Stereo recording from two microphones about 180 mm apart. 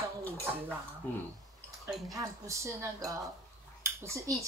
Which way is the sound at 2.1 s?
15° right (ahead or behind).